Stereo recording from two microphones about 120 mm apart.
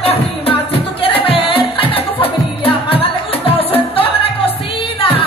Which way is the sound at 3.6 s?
55° left (ahead or behind).